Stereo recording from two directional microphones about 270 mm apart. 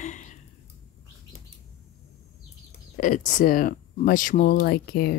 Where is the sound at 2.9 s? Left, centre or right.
Left.